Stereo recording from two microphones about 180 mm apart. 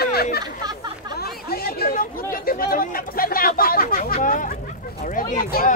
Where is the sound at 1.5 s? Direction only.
55° left (ahead or behind).